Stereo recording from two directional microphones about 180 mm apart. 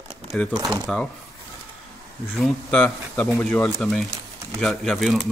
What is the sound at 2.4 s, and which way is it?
Speech, 5° left (ahead or behind).